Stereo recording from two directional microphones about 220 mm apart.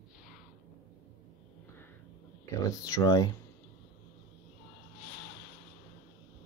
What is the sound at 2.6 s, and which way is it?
Speech, 15° left (ahead or behind).